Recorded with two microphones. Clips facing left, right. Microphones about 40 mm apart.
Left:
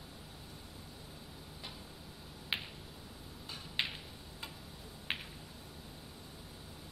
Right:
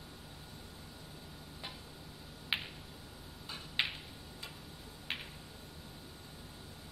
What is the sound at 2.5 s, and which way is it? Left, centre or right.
Finger snapping, centre.